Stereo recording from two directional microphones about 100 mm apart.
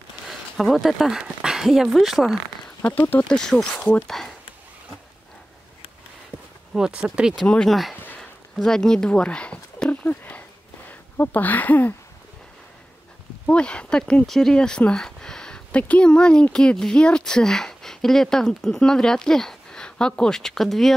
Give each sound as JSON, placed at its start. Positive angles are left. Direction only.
{"t": 0.3, "sound": "speech", "side_deg": 0}
{"t": 2.8, "sound": "speech", "side_deg": 20}
{"t": 3.3, "sound": "speech", "side_deg": 5}
{"t": 6.7, "sound": "speech", "side_deg": -5}
{"t": 7.4, "sound": "speech", "side_deg": 5}
{"t": 7.9, "sound": "a sound", "side_deg": 20}
{"t": 8.2, "sound": "a sound", "side_deg": 5}
{"t": 10.9, "sound": "speech", "side_deg": 15}
{"t": 13.5, "sound": "speech", "side_deg": 10}